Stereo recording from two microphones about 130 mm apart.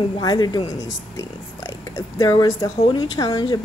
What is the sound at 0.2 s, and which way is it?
Speech, 30° left (ahead or behind).